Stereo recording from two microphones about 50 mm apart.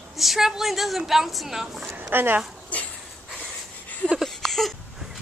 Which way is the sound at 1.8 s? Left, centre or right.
Right.